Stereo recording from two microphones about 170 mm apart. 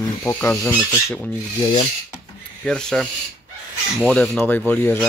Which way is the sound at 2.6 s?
5° left (ahead or behind).